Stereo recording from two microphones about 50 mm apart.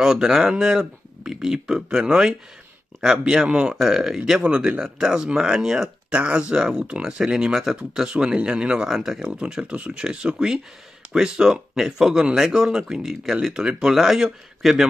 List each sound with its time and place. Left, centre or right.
0.0 s speech: centre
4.4 s speech: right
4.6 s speech: centre
10.0 s speech: centre